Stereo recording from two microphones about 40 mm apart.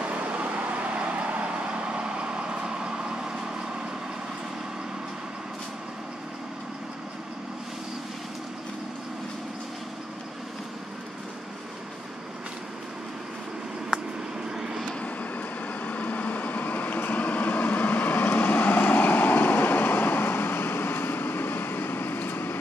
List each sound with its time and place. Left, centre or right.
0.1 s vehicle: right
15.0 s vehicle: left